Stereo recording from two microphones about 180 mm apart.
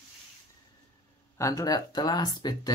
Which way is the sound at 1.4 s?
20° left (ahead or behind).